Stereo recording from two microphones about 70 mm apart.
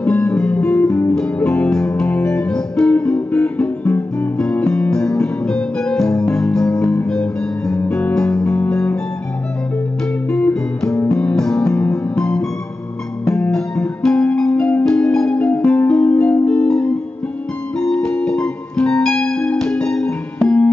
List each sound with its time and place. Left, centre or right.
0.0 s music: centre
1.1 s music: centre
10.3 s music: centre
13.5 s music: centre
14.9 s music: centre